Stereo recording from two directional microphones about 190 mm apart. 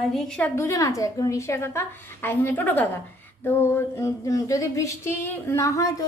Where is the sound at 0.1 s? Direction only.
10° left (ahead or behind).